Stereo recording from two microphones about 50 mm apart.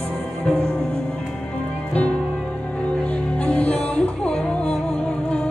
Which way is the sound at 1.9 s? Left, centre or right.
Left.